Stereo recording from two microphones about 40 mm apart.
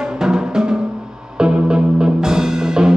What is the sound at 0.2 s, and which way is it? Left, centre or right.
Music, centre.